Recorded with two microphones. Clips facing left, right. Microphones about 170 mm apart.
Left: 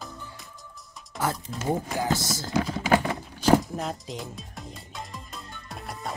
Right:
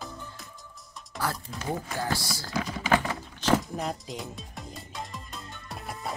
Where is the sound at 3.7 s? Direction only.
Centre (ahead or behind).